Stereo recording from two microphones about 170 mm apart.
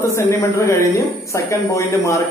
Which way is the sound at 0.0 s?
15° left (ahead or behind).